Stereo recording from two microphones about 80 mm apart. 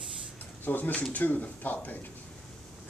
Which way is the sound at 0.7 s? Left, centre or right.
Left.